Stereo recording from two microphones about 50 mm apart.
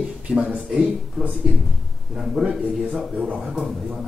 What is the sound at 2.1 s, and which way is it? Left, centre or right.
Speech, centre.